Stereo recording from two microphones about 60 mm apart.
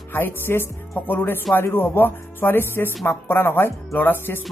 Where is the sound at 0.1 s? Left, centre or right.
Left.